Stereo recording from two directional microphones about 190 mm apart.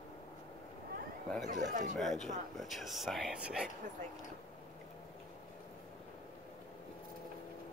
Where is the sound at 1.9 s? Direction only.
Centre (ahead or behind).